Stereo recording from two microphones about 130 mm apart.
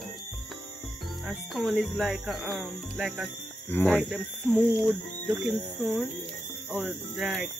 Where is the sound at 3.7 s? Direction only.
15° left (ahead or behind).